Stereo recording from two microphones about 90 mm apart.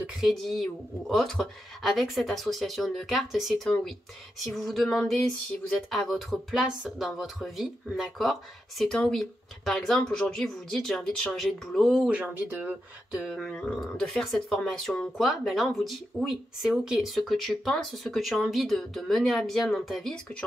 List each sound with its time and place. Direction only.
0.2 s music: centre (ahead or behind)
12.1 s speech: 20° right (ahead or behind)
13.1 s music: 5° right (ahead or behind)
13.5 s speech: 10° left (ahead or behind)
14.7 s music: 5° left (ahead or behind)